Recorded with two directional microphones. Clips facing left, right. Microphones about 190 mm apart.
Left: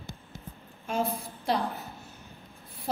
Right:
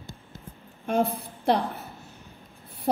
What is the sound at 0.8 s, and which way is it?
Speech, 60° right (ahead or behind).